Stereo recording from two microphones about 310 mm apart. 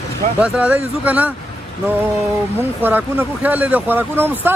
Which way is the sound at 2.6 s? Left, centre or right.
Centre.